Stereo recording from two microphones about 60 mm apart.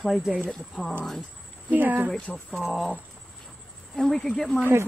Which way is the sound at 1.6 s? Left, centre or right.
Right.